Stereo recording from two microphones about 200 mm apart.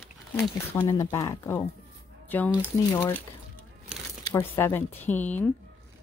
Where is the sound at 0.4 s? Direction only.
10° left (ahead or behind).